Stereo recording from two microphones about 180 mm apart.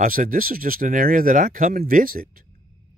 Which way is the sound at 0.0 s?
50° right (ahead or behind).